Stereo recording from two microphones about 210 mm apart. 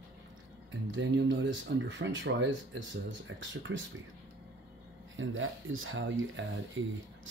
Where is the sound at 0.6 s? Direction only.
60° right (ahead or behind).